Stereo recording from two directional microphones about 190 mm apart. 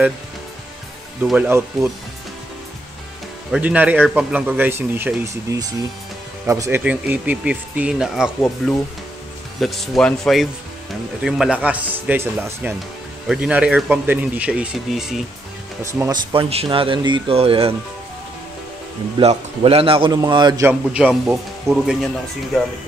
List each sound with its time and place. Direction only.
1.2 s speech: 10° right (ahead or behind)
3.5 s speech: 10° right (ahead or behind)
9.6 s speech: centre (ahead or behind)
15.8 s speech: 15° right (ahead or behind)
19.1 s speech: 30° right (ahead or behind)
20.9 s speech: 5° right (ahead or behind)